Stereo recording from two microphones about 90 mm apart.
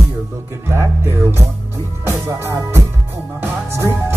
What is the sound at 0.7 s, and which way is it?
Music, 30° right (ahead or behind).